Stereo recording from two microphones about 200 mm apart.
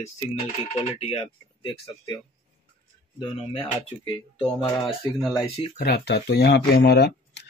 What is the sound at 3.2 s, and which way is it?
Speech, 25° left (ahead or behind).